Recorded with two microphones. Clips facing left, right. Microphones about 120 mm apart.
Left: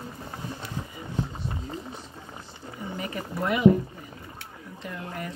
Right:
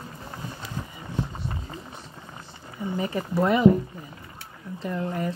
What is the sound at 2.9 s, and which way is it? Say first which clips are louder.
Speech: right 7 dB; 30° right (ahead or behind).